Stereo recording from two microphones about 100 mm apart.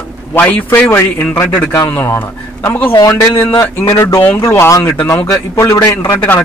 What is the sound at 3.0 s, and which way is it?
A man's voice, 35° left (ahead or behind).